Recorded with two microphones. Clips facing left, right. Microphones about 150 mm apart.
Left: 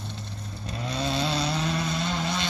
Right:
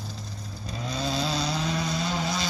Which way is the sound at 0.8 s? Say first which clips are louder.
Left 1 dB; centre (ahead or behind).